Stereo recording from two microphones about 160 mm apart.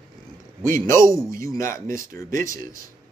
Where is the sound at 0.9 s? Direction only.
15° left (ahead or behind).